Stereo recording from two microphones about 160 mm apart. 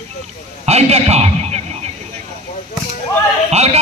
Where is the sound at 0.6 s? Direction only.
40° right (ahead or behind).